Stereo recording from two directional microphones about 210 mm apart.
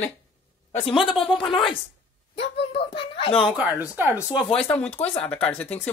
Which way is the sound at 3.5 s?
Centre (ahead or behind).